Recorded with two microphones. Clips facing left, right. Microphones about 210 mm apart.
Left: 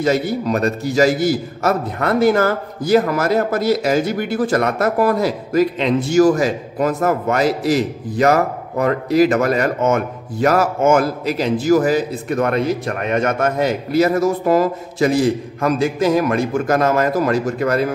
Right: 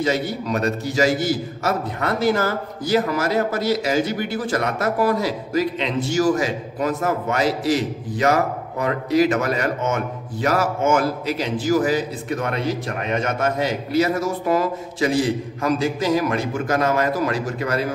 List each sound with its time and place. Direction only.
0.0 s a man's voice: 45° left (ahead or behind)
1.6 s a man's voice: 55° left (ahead or behind)
15.6 s a man's voice: 55° left (ahead or behind)